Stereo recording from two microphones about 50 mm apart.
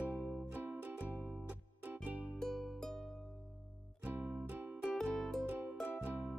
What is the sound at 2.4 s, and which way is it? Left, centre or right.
Music, centre.